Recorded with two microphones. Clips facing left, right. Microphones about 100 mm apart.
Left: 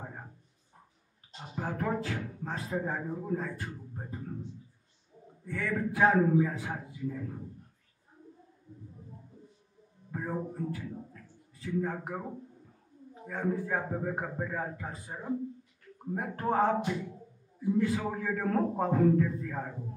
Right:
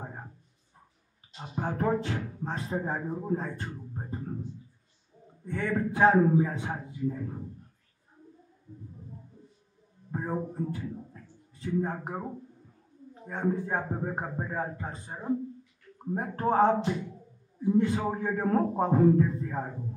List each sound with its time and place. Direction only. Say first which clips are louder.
1.4 s a man's voice: right 4 dB; 25° right (ahead or behind)
3.9 s music: right 4 dB; 25° right (ahead or behind)
5.4 s a man's voice: right 3 dB; 30° right (ahead or behind)
10.1 s a man's voice: right 3 dB; 25° right (ahead or behind)
13.3 s a man's voice: right 2 dB; 30° right (ahead or behind)